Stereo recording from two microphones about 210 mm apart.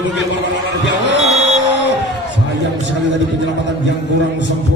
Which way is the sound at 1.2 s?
30° right (ahead or behind).